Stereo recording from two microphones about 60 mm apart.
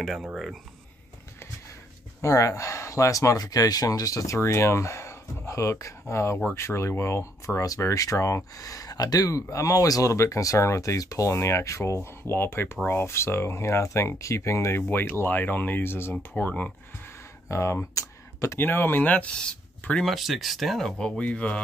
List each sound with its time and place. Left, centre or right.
0.0 s speech: centre
2.2 s speech: left
4.4 s speech: left
10.1 s speech: left
14.8 s speech: left
17.5 s speech: left
17.9 s a sound: left
18.6 s speech: left
20.1 s speech: centre
21.0 s speech: left